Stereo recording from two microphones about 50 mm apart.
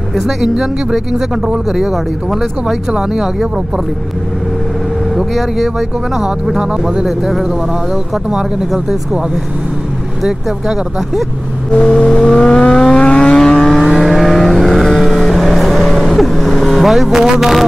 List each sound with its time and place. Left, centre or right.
0.6 s speech: centre
5.1 s speech: centre
10.2 s speech: centre
11.7 s vehicle: centre
13.7 s vehicle: centre